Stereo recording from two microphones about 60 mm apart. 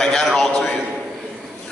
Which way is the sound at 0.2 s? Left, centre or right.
Centre.